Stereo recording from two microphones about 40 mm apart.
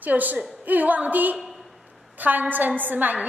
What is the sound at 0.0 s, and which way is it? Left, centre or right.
A woman's voice, right.